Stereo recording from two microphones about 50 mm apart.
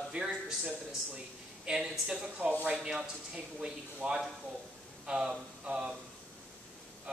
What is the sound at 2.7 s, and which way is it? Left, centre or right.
A man's voice, centre.